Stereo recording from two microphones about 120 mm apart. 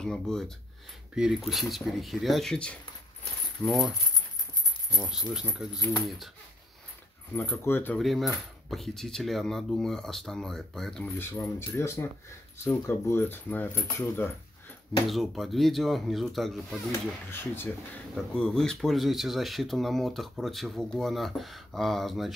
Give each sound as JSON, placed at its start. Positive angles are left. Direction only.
{"t": 0.0, "sound": "speech", "side_deg": 5}
{"t": 5.3, "sound": "speech", "side_deg": -5}
{"t": 7.3, "sound": "speech", "side_deg": 20}
{"t": 8.0, "sound": "speech", "side_deg": 0}
{"t": 11.1, "sound": "speech", "side_deg": 20}
{"t": 15.0, "sound": "speech", "side_deg": 0}
{"t": 17.3, "sound": "speech", "side_deg": 20}
{"t": 18.1, "sound": "speech", "side_deg": 5}